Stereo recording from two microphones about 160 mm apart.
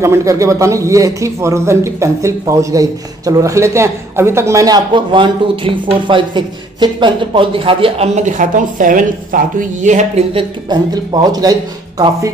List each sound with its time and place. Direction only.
0.0 s a man's voice: 20° right (ahead or behind); by 10.2 s 50° right (ahead or behind)
10.3 s a man's voice: 25° right (ahead or behind)